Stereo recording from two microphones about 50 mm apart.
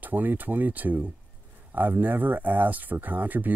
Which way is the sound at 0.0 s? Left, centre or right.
Right.